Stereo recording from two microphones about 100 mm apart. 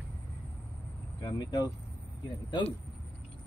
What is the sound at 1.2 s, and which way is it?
Speech, 45° left (ahead or behind).